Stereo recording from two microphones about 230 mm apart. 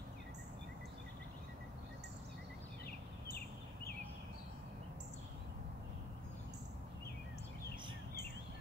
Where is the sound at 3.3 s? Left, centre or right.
Left.